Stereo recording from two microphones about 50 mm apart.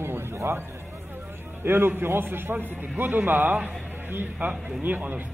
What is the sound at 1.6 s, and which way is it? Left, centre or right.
A man's voice, right.